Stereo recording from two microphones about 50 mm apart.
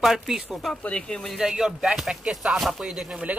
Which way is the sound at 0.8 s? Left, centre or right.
Left.